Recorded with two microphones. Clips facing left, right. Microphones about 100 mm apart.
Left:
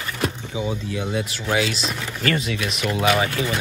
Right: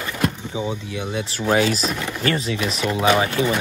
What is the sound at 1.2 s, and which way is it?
Speech, 35° right (ahead or behind).